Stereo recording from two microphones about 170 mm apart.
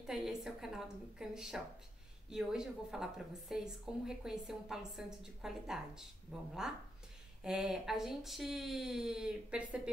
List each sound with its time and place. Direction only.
0.0 s speech: 5° right (ahead or behind)